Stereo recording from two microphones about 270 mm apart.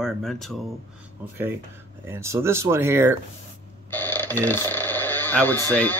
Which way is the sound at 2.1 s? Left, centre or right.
Centre.